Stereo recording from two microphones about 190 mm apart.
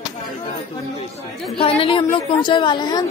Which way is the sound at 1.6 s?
30° left (ahead or behind).